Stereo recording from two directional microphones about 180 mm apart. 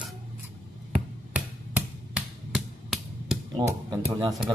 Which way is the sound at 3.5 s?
25° right (ahead or behind).